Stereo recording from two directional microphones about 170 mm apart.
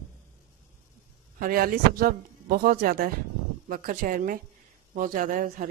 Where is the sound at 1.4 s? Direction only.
60° right (ahead or behind).